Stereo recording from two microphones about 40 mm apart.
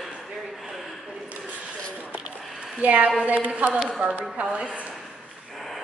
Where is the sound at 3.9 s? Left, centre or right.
Right.